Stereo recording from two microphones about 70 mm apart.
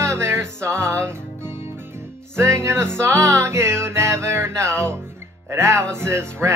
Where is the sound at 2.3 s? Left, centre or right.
Right.